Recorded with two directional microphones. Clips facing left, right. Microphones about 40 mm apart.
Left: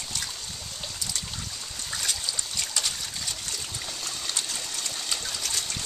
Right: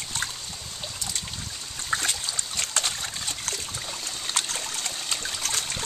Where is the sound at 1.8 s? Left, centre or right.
Right.